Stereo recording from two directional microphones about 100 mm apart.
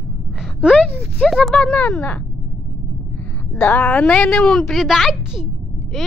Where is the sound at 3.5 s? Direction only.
20° left (ahead or behind).